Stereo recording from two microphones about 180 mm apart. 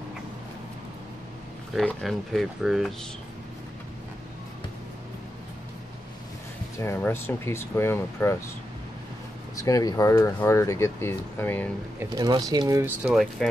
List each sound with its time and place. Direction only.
1.8 s speech: centre (ahead or behind)
6.8 s speech: 10° left (ahead or behind)
9.6 s speech: 20° left (ahead or behind)
12.0 s speech: 20° right (ahead or behind)
13.0 s speech: 5° right (ahead or behind)